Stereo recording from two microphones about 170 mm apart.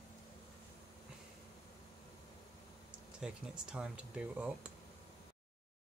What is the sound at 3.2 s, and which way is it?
Speech, 5° right (ahead or behind).